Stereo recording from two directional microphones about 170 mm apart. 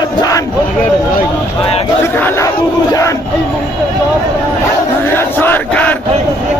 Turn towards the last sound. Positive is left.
turn(degrees=10)  # may be behind; listen again after turning